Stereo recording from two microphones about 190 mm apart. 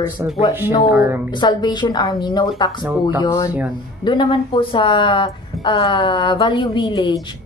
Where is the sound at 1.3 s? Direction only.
25° left (ahead or behind).